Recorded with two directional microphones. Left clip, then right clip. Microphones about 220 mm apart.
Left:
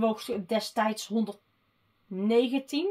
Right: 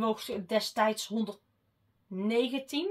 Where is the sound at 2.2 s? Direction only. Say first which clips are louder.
Left 4 dB; 40° left (ahead or behind).